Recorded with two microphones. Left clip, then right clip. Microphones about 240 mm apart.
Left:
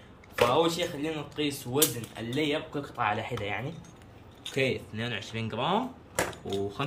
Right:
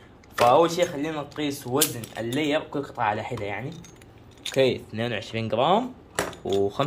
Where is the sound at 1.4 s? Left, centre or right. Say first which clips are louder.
Right 2 dB; centre.